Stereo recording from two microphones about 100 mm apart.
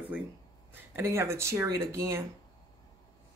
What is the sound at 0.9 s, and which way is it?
A woman's voice, 25° right (ahead or behind).